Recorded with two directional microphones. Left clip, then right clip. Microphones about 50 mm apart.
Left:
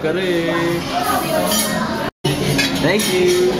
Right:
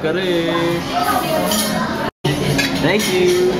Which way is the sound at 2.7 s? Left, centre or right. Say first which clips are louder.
Right 1 dB; centre.